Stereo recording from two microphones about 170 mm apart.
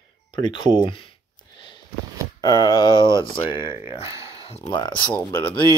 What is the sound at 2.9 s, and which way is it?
Speech, 20° right (ahead or behind).